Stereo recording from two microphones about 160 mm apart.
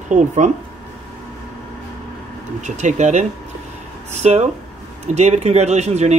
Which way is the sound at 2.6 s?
45° right (ahead or behind).